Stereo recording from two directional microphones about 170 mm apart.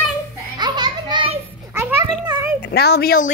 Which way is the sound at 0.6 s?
25° right (ahead or behind).